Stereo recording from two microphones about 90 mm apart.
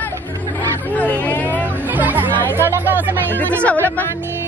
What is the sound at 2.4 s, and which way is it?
Speech, 20° left (ahead or behind).